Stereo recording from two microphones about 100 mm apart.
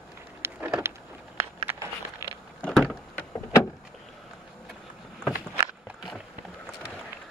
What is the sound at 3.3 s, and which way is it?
Vehicle, 30° left (ahead or behind).